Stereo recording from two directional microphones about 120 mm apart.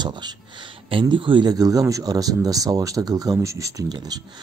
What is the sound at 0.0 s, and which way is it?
Speech, 35° right (ahead or behind).